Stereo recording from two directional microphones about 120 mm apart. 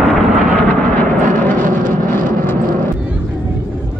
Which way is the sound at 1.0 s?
90° right.